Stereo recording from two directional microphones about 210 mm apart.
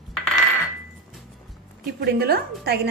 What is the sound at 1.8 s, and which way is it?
Speech, 50° right (ahead or behind).